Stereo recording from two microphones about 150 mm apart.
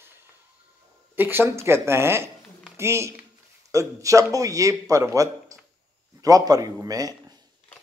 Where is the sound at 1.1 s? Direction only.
15° right (ahead or behind).